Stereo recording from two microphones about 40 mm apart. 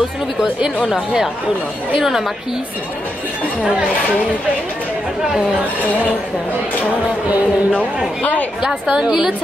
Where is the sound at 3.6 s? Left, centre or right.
Right.